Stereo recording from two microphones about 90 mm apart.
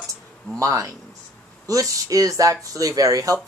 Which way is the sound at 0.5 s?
35° right (ahead or behind).